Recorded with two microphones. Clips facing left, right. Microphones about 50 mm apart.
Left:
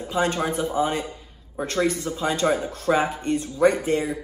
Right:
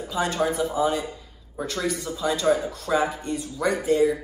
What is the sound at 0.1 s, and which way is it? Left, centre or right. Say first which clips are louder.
A man's voice: left 1 dB; left.